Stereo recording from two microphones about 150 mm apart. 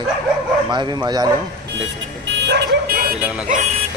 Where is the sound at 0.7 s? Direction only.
30° right (ahead or behind).